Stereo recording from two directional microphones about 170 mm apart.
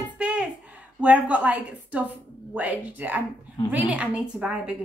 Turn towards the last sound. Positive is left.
turn(degrees=-10)  # may be behind; listen again after turning